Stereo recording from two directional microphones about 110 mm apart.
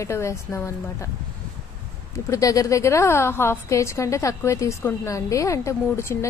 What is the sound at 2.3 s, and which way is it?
A woman's voice, 30° left (ahead or behind).